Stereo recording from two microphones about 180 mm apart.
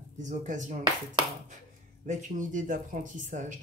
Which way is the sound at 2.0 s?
45° right (ahead or behind).